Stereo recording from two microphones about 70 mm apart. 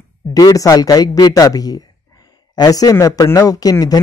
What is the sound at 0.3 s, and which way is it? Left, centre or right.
Speech, left.